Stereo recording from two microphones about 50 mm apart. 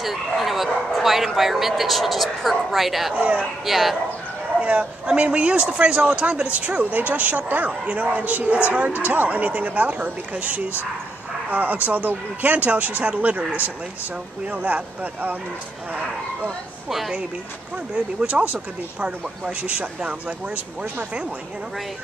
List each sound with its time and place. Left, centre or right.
0.0 s speech: centre
3.2 s a man's voice: right
3.6 s speech: centre
4.6 s a man's voice: right
18.2 s speech: right